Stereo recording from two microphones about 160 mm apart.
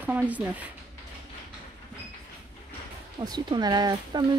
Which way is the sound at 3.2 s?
25° right (ahead or behind).